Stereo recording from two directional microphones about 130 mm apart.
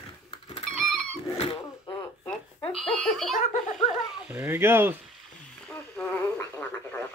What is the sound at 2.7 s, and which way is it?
Baby laughter, centre (ahead or behind).